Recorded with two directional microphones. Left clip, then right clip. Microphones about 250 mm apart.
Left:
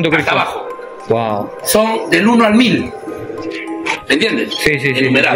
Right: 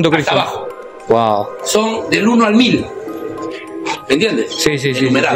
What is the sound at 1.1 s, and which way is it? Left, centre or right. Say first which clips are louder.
Speech: right 4 dB; centre.